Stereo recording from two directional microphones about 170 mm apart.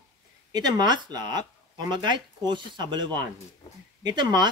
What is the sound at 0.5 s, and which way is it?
Speech, 25° right (ahead or behind).